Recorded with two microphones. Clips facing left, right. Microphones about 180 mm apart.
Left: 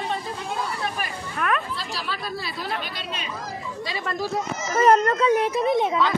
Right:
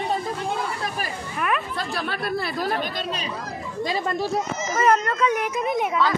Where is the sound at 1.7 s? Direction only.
55° right (ahead or behind).